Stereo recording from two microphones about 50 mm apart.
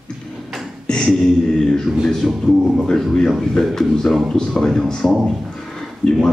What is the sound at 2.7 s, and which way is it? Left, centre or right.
Speech, centre.